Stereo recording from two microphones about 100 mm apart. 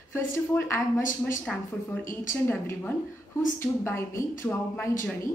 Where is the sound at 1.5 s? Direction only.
10° left (ahead or behind).